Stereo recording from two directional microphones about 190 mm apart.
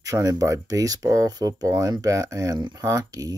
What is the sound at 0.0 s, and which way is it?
Speech, 20° right (ahead or behind).